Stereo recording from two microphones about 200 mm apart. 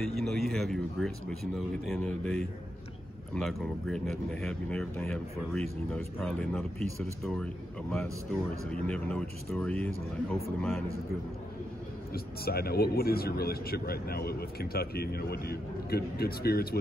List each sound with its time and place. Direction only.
0.0 s speech: centre (ahead or behind)
12.1 s a man's voice: 50° left (ahead or behind)